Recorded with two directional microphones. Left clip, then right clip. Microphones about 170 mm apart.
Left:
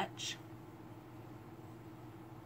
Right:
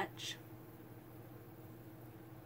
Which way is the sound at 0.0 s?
35° right (ahead or behind).